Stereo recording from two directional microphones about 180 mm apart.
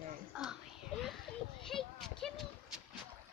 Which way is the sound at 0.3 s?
5° right (ahead or behind).